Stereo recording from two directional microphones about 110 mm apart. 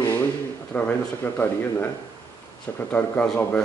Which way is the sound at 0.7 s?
15° left (ahead or behind).